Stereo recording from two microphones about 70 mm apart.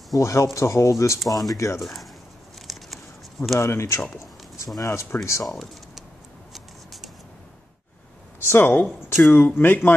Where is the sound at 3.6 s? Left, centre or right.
Left.